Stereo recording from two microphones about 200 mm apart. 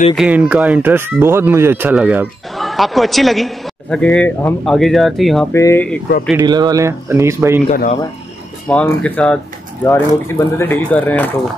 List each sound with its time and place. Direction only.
0.1 s speech: 5° right (ahead or behind)
5.5 s speech: 15° left (ahead or behind)
6.4 s speech: 20° right (ahead or behind)
7.7 s speech: 40° left (ahead or behind)
8.6 s speech: 5° left (ahead or behind)